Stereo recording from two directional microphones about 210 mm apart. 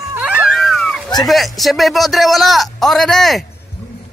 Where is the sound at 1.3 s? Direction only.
Centre (ahead or behind).